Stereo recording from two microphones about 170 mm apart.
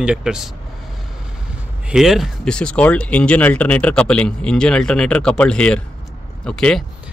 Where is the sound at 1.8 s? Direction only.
Centre (ahead or behind).